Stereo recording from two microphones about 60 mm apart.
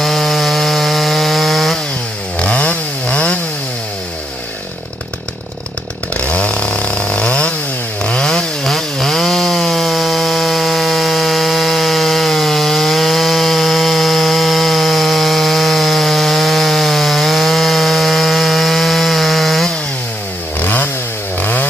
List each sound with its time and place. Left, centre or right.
0.0 s chainsaw: centre
2.3 s chainsaw: left
6.1 s chainsaw: left; by 19.7 s centre
20.5 s chainsaw: left